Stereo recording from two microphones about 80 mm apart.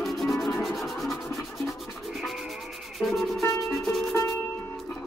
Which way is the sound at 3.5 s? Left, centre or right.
Centre.